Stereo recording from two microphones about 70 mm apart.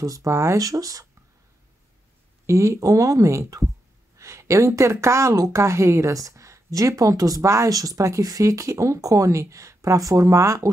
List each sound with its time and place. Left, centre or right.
0.0 s speech: right
2.4 s speech: right